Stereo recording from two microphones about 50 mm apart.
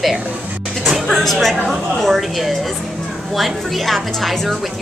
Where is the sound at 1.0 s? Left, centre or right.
Centre.